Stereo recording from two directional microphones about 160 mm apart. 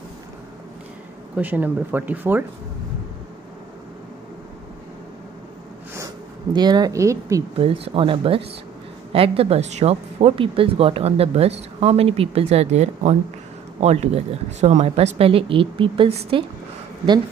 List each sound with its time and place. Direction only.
1.3 s speech: 10° right (ahead or behind)
5.9 s speech: 25° right (ahead or behind)
7.5 s speech: 35° right (ahead or behind)